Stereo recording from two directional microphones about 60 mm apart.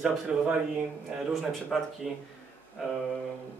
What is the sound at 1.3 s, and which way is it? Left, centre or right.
Speech, centre.